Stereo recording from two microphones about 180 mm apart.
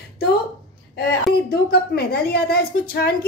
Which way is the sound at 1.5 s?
60° left (ahead or behind).